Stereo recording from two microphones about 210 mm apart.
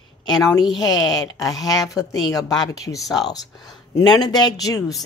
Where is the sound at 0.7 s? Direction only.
20° left (ahead or behind).